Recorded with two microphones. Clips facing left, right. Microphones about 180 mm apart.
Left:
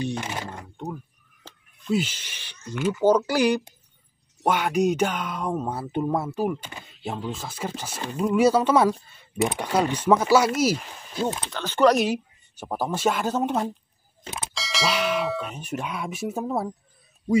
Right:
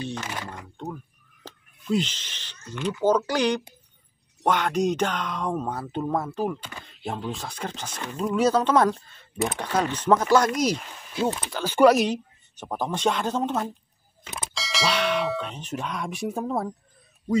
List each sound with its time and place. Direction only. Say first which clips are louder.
0.0 s speech: left 3 dB; 15° left (ahead or behind)
1.9 s speech: even; 5° left (ahead or behind)
6.8 s speech: even; 5° left (ahead or behind)
11.5 s speech: right 2 dB; 10° right (ahead or behind)
12.1 s speech: left 2 dB; 10° left (ahead or behind)